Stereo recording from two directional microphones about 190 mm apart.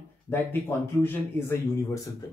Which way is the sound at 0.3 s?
10° left (ahead or behind).